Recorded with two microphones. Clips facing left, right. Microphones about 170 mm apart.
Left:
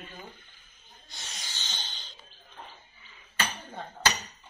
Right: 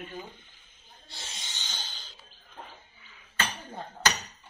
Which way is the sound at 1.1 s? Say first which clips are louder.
Even; 25° right (ahead or behind).